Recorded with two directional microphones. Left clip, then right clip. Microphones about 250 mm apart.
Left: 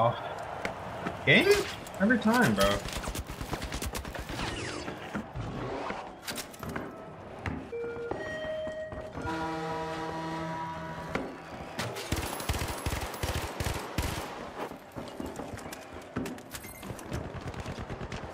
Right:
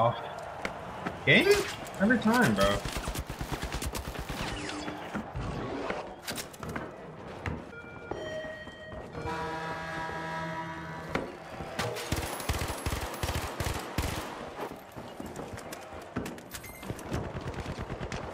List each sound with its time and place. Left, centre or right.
0.0 s speech: centre
6.2 s a sound: centre
11.1 s music: centre
11.7 s fusillade: centre
12.1 s machine gun: centre